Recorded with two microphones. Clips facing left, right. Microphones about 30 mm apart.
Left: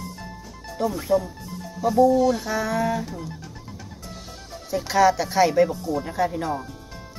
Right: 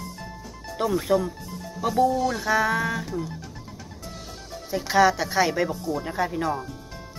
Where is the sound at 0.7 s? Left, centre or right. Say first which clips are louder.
Even; right.